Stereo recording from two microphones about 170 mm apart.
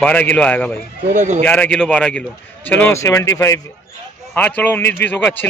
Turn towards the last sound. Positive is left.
turn(degrees=10)  # may be behind; listen again after turning